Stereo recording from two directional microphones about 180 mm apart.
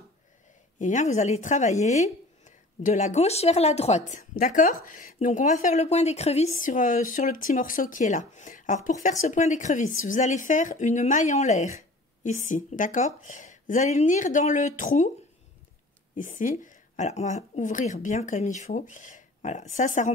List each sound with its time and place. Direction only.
0.7 s speech: 45° left (ahead or behind)
16.2 s speech: 45° left (ahead or behind)